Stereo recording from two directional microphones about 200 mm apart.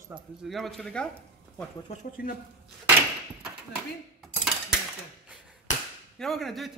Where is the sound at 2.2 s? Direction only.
50° left (ahead or behind).